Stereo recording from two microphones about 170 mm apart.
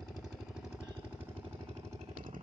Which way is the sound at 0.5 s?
5° right (ahead or behind).